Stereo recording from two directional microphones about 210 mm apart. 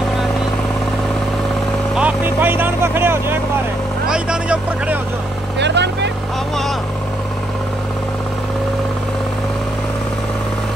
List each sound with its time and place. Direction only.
2.0 s vehicle: 5° right (ahead or behind)
4.1 s speech: 5° right (ahead or behind)
5.6 s speech: 55° right (ahead or behind)